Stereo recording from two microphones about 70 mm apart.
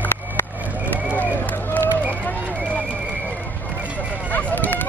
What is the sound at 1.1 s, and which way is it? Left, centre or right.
Run, left.